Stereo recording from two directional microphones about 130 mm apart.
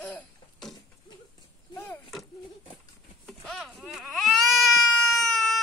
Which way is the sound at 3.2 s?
Centre (ahead or behind).